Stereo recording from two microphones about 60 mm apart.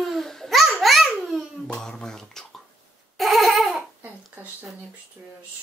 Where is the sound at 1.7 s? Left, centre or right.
Centre.